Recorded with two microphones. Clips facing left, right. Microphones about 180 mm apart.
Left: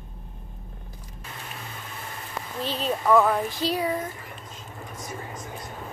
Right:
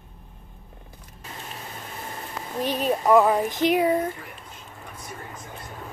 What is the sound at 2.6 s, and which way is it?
Child singing, 15° right (ahead or behind).